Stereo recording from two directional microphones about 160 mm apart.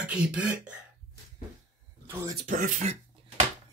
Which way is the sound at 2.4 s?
55° right (ahead or behind).